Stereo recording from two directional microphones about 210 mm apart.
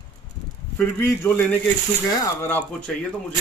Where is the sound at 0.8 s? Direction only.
10° left (ahead or behind).